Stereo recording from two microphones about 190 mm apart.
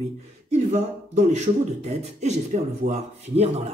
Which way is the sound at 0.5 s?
35° right (ahead or behind).